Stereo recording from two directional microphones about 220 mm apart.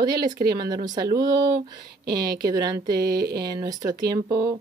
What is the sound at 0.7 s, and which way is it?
Speech, 20° right (ahead or behind).